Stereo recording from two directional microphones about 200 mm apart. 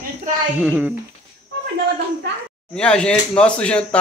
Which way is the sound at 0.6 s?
5° right (ahead or behind).